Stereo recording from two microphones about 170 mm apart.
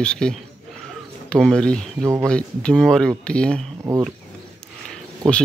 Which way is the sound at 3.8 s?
20° right (ahead or behind).